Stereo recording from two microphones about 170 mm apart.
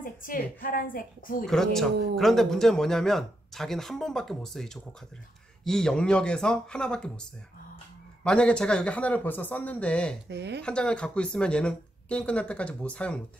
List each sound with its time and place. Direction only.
0.0 s a woman's voice: 55° left (ahead or behind)
1.5 s speech: centre (ahead or behind)
8.2 s speech: 5° left (ahead or behind)
10.2 s speech: 90° right
10.6 s speech: 5° left (ahead or behind)